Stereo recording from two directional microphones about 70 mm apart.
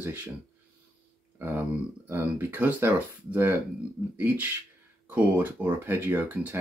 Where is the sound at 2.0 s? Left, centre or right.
Right.